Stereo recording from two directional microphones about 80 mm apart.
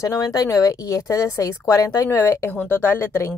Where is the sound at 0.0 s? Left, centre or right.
Left.